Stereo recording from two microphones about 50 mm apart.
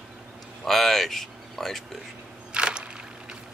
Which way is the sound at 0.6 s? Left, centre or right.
Centre.